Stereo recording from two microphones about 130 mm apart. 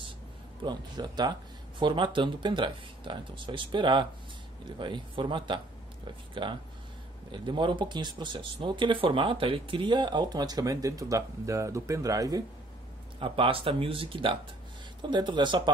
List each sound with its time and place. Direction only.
0.7 s speech: 35° right (ahead or behind)
13.2 s speech: 45° right (ahead or behind)